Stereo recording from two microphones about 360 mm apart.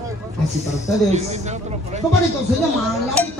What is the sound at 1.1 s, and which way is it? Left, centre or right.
Speech, centre.